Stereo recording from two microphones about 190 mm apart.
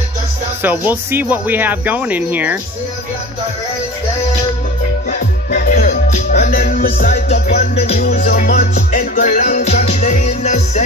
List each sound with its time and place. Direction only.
0.6 s speech: 10° right (ahead or behind)
5.5 s music: 50° left (ahead or behind)
7.7 s music: 35° left (ahead or behind)
8.0 s music: 50° left (ahead or behind)